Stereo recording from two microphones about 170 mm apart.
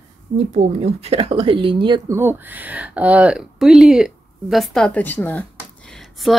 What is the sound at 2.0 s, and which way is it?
Speech, 15° right (ahead or behind).